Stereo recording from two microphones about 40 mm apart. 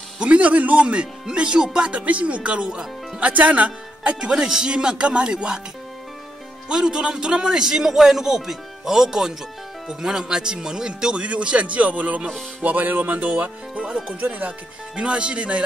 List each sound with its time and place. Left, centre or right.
0.2 s speech: right
2.0 s speech: right
3.2 s speech: right
6.7 s a man's voice: centre
11.2 s speech: right
13.3 s speech: right
15.0 s speech: right